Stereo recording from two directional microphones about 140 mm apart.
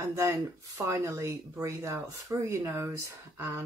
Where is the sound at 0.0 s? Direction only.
20° right (ahead or behind).